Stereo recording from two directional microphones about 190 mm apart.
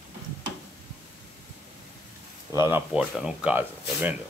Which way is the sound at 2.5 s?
15° right (ahead or behind).